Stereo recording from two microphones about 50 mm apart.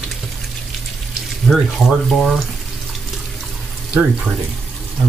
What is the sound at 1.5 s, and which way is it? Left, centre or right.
Speech, centre.